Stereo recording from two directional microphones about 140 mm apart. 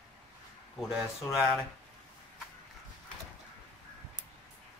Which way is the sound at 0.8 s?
5° right (ahead or behind).